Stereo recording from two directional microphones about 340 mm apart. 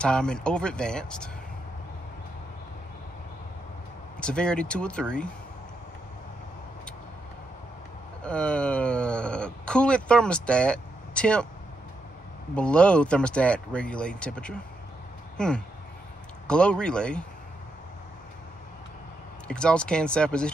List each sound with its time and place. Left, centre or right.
0.0 s speech: centre
4.2 s speech: centre
8.2 s speech: centre
12.5 s speech: centre
19.4 s speech: centre